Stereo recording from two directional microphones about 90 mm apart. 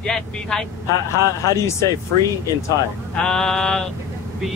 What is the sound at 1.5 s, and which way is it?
Speech, 35° left (ahead or behind).